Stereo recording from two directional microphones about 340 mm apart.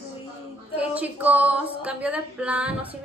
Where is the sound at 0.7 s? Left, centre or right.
Centre.